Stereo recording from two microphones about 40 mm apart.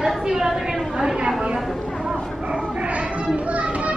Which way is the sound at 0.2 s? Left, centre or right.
Centre.